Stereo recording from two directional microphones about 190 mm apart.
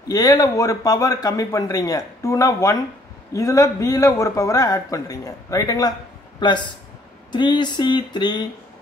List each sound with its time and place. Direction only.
0.1 s a man's voice: 20° left (ahead or behind)